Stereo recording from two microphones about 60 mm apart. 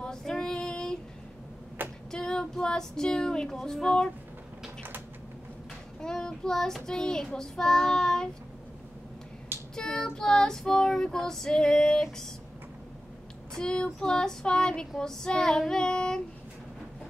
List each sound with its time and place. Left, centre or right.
0.0 s female singing: centre
2.0 s child singing: centre
5.9 s child singing: centre
9.8 s child singing: centre
13.6 s child singing: centre